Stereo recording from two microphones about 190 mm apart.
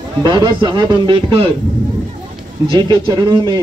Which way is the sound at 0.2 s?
20° right (ahead or behind).